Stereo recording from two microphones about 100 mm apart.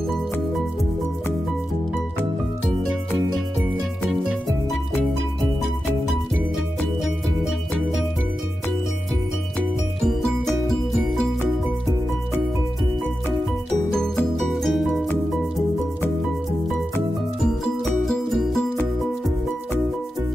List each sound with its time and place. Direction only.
4.1 s music: centre (ahead or behind)
10.0 s music: 5° left (ahead or behind)
14.4 s music: centre (ahead or behind)
18.0 s music: centre (ahead or behind)